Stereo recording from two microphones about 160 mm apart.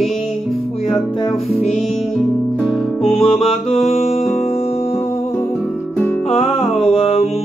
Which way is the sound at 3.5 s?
40° left (ahead or behind).